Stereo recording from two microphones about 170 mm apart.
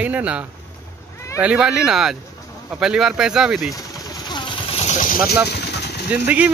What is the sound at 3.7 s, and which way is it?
Vehicle, 25° left (ahead or behind).